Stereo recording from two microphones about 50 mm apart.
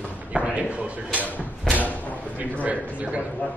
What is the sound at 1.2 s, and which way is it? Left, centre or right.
Speech, left.